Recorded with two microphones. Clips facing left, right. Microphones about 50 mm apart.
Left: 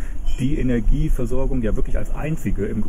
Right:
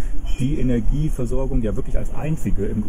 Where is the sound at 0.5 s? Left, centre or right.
Left.